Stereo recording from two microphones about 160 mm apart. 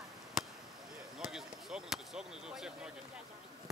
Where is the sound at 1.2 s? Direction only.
5° right (ahead or behind).